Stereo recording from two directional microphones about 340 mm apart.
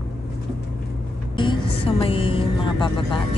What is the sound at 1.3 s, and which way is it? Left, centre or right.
A woman's voice, centre.